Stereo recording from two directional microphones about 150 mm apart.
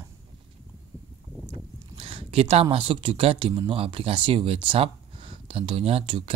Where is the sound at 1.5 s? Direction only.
40° right (ahead or behind).